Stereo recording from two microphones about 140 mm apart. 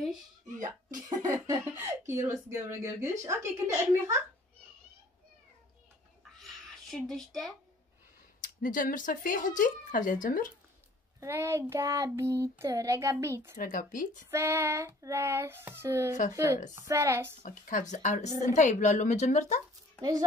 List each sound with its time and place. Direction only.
0.6 s speech: 25° right (ahead or behind)
6.3 s a sound: centre (ahead or behind)
8.4 s speech: 75° left (ahead or behind)
11.1 s child singing: 20° right (ahead or behind)
13.6 s speech: 70° left (ahead or behind)
14.3 s child singing: 20° right (ahead or behind)
17.4 s a woman's voice: 70° left (ahead or behind)
20.0 s child singing: 25° right (ahead or behind)